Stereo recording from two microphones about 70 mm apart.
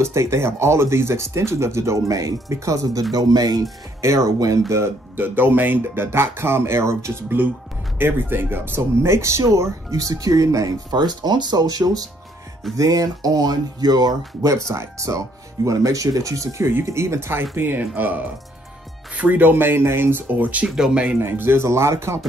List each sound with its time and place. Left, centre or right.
0.0 s speech: right
4.0 s speech: right
10.9 s speech: right
12.7 s speech: right
14.7 s speech: right
20.6 s speech: centre
21.2 s speech: right